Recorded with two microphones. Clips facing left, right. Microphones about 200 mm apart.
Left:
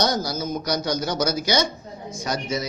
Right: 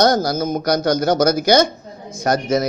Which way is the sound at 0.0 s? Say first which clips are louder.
Right 8 dB; 50° right (ahead or behind).